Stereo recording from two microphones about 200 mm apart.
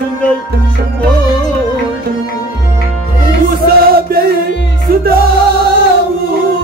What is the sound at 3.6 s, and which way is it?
Music, 50° right (ahead or behind).